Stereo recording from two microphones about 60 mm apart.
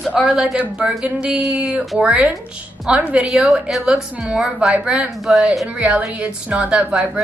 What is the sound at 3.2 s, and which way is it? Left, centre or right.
Speech, centre.